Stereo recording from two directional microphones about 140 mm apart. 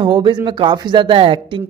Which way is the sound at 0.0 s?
35° right (ahead or behind).